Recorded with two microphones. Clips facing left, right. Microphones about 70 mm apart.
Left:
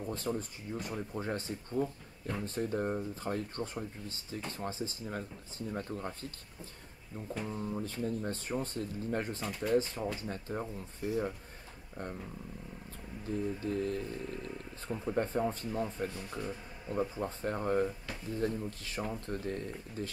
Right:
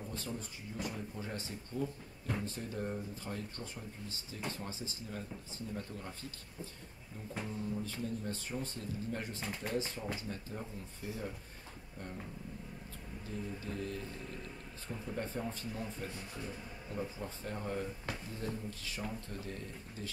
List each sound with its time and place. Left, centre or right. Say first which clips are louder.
0.1 s speech: left 9 dB; left
7.4 s speech: even; left
11.0 s speech: left 9 dB; left
13.6 s speech: left 7 dB; left